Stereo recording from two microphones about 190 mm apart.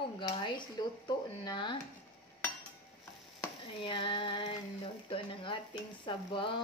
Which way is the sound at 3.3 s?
25° left (ahead or behind).